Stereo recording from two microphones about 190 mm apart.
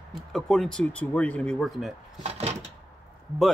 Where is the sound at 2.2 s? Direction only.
35° right (ahead or behind).